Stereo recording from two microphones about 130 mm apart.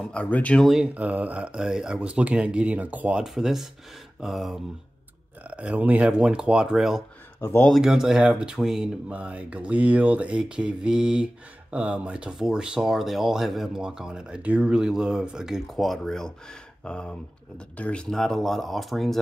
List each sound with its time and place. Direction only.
0.0 s speech: 10° left (ahead or behind)
0.7 s speech: 5° right (ahead or behind)
7.3 s speech: 20° left (ahead or behind)
7.6 s speech: centre (ahead or behind)